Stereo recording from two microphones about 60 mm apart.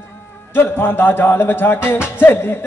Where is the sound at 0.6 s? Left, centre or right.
Left.